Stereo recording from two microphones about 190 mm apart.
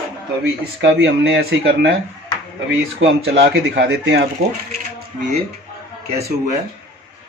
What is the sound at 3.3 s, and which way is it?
Speech, 70° right (ahead or behind).